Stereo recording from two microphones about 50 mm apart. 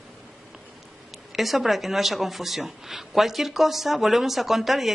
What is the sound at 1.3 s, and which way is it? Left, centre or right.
Speech, centre.